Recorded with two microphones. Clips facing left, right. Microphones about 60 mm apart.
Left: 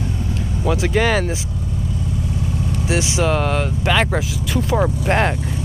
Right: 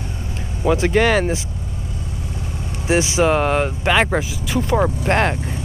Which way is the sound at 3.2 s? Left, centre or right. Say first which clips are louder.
Right 2 dB; centre.